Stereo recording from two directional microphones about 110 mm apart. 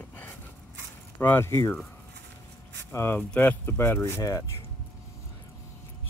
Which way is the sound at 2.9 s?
20° left (ahead or behind).